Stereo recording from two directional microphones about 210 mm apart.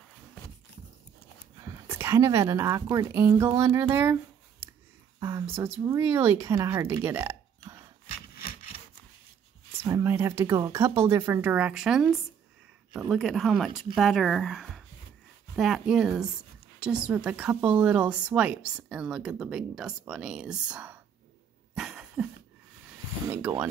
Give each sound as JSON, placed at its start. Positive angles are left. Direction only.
{"t": 1.6, "sound": "a woman's voice", "side_deg": -15}
{"t": 9.8, "sound": "a woman's voice", "side_deg": -15}
{"t": 21.7, "sound": "cough", "side_deg": -5}
{"t": 23.2, "sound": "speech", "side_deg": -10}